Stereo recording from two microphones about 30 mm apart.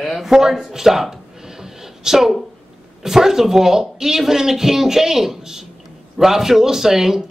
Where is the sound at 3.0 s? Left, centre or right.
Centre.